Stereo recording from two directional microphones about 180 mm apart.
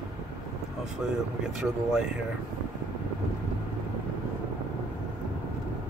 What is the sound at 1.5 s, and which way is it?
Speech, 5° right (ahead or behind).